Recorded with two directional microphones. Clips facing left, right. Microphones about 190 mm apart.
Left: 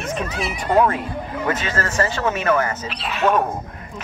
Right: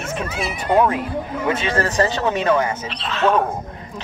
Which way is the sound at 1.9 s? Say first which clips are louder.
Right 2 dB; 20° right (ahead or behind).